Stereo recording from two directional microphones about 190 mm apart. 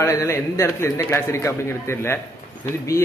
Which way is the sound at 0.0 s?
15° left (ahead or behind).